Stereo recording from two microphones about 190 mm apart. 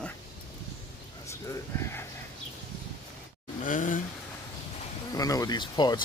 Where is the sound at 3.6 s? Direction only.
45° left (ahead or behind).